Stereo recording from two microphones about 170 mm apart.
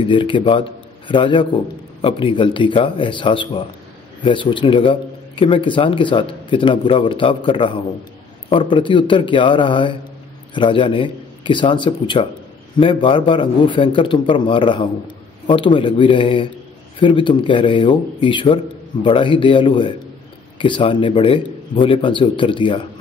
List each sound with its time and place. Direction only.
0.0 s a man's voice: 30° left (ahead or behind)